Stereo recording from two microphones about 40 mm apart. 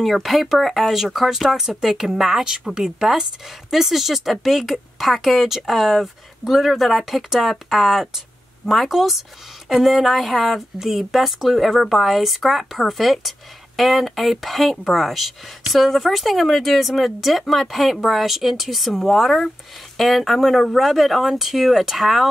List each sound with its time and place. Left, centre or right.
0.0 s speech: centre
2.4 s speech: centre